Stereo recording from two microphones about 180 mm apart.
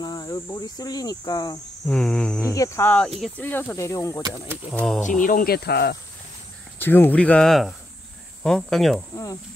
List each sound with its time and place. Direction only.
0.0 s speech: 20° left (ahead or behind)
1.9 s speech: 5° left (ahead or behind)
2.5 s speech: 15° left (ahead or behind)
4.7 s speech: centre (ahead or behind)
5.0 s speech: 45° left (ahead or behind); by 5.9 s 65° left (ahead or behind)
6.8 s speech: 10° left (ahead or behind)
9.1 s speech: 20° left (ahead or behind)